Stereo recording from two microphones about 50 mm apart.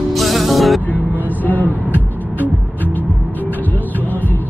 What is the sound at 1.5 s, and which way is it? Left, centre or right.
Music, left.